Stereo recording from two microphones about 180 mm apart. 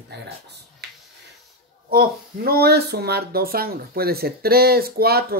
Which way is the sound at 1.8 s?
55° right (ahead or behind).